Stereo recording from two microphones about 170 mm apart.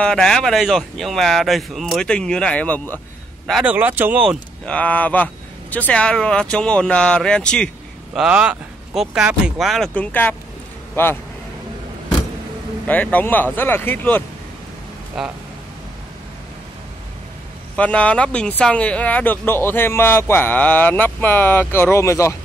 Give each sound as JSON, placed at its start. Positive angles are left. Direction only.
{"t": 0.0, "sound": "speech", "side_deg": 5}
{"t": 3.4, "sound": "speech", "side_deg": -5}
{"t": 4.6, "sound": "speech", "side_deg": 10}
{"t": 8.1, "sound": "speech", "side_deg": -5}
{"t": 12.8, "sound": "speech", "side_deg": 10}
{"t": 15.2, "sound": "speech", "side_deg": 0}
{"t": 17.7, "sound": "speech", "side_deg": 10}